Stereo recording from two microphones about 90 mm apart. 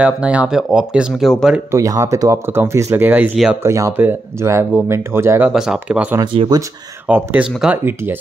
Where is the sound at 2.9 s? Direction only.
20° right (ahead or behind).